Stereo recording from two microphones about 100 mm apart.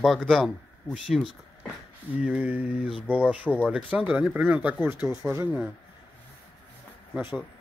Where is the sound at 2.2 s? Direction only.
10° right (ahead or behind).